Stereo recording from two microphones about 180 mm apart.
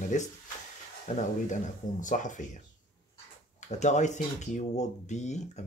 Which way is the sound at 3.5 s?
40° left (ahead or behind).